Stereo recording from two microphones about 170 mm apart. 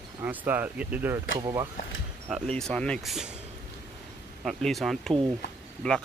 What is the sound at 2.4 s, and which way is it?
Speech, 5° left (ahead or behind).